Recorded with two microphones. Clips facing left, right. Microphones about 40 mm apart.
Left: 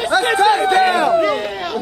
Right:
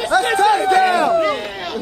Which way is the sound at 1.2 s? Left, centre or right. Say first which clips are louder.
Left 2 dB; centre.